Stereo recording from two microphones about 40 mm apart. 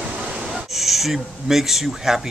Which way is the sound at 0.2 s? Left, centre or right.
Right.